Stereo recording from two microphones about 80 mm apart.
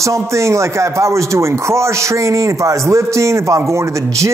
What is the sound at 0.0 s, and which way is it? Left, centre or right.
Speech, right.